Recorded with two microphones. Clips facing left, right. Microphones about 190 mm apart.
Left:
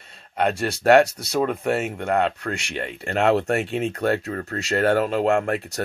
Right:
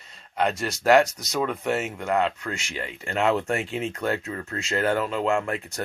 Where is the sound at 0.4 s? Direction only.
60° left (ahead or behind).